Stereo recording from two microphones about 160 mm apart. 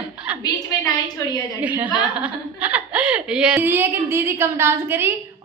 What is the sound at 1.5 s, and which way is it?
Speech, 10° right (ahead or behind).